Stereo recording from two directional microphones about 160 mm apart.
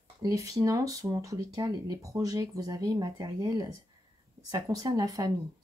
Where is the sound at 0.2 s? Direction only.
20° right (ahead or behind).